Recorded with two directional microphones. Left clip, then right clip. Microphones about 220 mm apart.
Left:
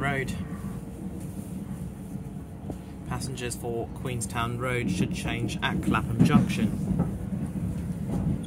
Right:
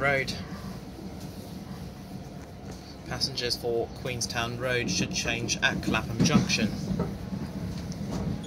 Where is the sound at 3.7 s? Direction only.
15° left (ahead or behind).